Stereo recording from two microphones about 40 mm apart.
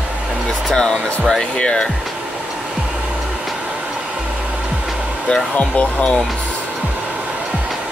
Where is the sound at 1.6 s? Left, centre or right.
Left.